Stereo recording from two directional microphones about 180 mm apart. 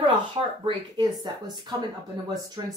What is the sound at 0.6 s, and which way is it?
Speech, 25° right (ahead or behind).